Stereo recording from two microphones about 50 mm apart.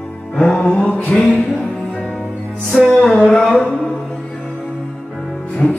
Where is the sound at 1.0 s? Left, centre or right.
Left.